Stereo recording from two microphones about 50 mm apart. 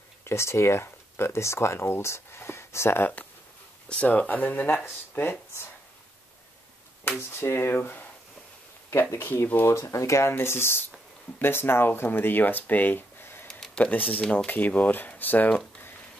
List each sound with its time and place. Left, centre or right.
0.2 s speech: left
3.9 s speech: left
5.2 s speech: left
7.1 s speech: left
9.5 s speech: left
9.8 s speech: left
10.4 s speech: left
13.2 s a sound: left
13.9 s speech: left